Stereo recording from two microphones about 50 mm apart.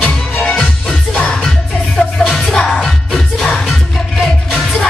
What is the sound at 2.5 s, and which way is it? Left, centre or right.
Music, centre.